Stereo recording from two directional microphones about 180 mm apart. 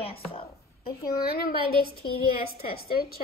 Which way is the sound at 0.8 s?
60° left (ahead or behind).